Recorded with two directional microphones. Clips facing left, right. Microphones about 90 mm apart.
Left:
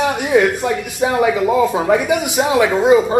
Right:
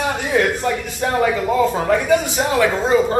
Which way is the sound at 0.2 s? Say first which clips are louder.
Left 3 dB; 10° left (ahead or behind).